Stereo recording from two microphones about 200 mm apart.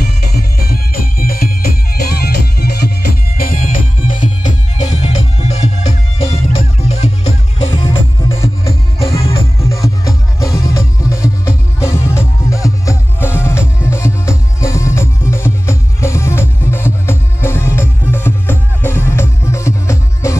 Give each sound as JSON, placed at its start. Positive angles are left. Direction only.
{"t": 0.3, "sound": "music", "side_deg": 50}
{"t": 7.7, "sound": "music", "side_deg": 20}
{"t": 9.0, "sound": "music", "side_deg": 25}
{"t": 9.7, "sound": "music", "side_deg": 15}